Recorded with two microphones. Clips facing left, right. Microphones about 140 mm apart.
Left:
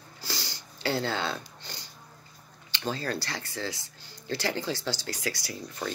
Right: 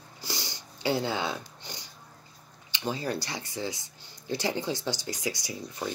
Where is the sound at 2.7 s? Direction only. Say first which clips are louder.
Right 1 dB; 15° right (ahead or behind).